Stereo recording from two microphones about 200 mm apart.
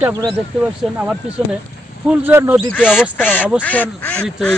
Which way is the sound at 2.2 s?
10° right (ahead or behind).